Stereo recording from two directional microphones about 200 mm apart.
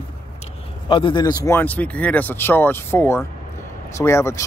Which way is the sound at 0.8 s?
25° left (ahead or behind).